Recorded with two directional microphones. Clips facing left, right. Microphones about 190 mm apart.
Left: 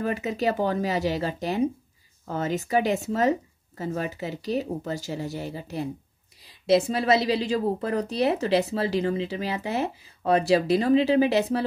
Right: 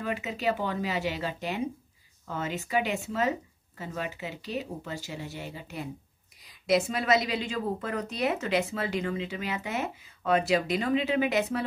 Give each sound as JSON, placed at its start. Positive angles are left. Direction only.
{"t": 0.0, "sound": "a woman's voice", "side_deg": 40}